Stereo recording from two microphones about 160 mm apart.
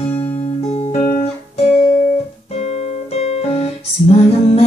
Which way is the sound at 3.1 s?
40° left (ahead or behind).